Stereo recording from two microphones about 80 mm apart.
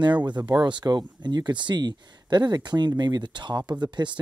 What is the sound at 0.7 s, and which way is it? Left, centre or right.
Speech, right.